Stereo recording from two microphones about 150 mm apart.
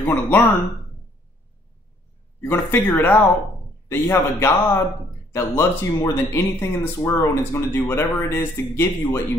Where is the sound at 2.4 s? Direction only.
10° left (ahead or behind).